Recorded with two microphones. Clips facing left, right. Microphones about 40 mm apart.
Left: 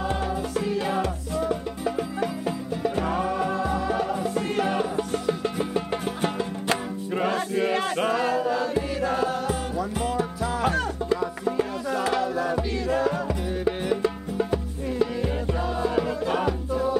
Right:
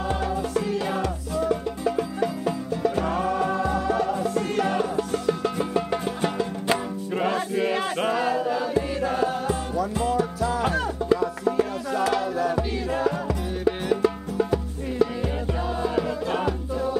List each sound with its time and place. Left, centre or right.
0.1 s music: centre
9.8 s music: centre
10.6 s music: centre
11.5 s music: centre